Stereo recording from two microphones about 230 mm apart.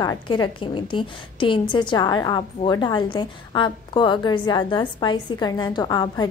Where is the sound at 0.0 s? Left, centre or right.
Centre.